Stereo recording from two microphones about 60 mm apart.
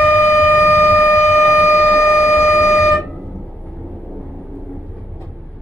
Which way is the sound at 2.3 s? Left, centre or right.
Left.